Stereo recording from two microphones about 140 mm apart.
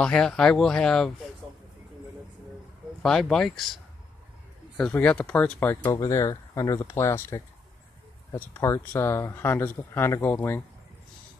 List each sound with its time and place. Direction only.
0.0 s speech: 5° left (ahead or behind)
3.0 s speech: 5° left (ahead or behind)
5.9 s speech: 25° left (ahead or behind)